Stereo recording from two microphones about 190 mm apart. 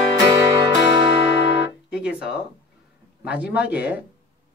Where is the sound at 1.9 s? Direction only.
5° right (ahead or behind).